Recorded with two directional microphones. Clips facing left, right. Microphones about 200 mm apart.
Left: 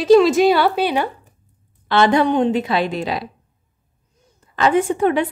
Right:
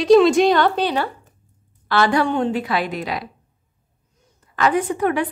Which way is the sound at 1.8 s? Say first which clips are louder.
Left 3 dB; 20° left (ahead or behind).